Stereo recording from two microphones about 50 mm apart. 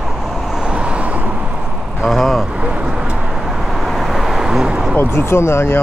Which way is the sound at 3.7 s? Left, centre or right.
Centre.